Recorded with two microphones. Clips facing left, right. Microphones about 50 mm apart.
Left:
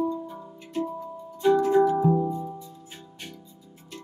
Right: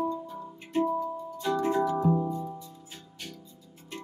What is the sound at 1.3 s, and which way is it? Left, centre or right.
Music, left.